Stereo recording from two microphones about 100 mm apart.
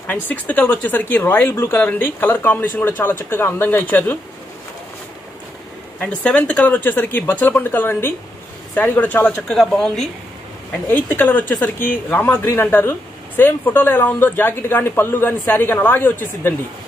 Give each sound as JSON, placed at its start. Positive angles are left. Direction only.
{"t": 0.0, "sound": "speech", "side_deg": 15}
{"t": 5.9, "sound": "speech", "side_deg": 10}
{"t": 9.5, "sound": "speech", "side_deg": 5}
{"t": 10.9, "sound": "speech", "side_deg": 15}